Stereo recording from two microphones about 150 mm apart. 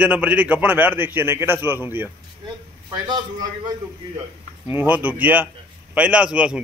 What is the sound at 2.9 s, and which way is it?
Speech, 30° right (ahead or behind).